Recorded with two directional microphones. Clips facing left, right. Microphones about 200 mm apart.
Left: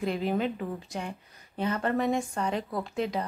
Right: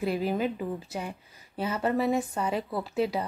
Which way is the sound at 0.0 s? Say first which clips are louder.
Right 1 dB; 5° right (ahead or behind).